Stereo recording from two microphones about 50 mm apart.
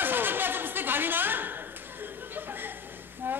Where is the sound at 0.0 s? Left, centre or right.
Right.